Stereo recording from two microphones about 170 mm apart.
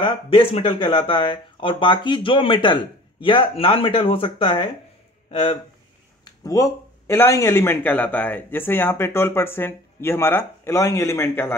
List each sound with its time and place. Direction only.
0.0 s speech: 30° left (ahead or behind)
6.2 s speech: 20° left (ahead or behind)